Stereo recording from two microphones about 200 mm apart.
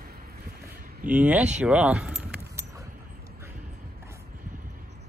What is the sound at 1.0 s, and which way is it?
Speech, 5° right (ahead or behind).